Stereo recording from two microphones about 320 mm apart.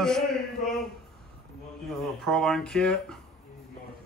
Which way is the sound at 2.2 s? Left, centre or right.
Centre.